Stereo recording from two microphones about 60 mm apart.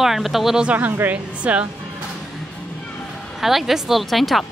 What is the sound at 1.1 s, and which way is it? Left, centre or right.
Speech, right.